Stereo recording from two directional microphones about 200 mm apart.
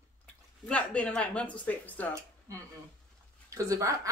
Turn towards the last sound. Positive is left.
turn(degrees=-15)  # may be behind; listen again after turning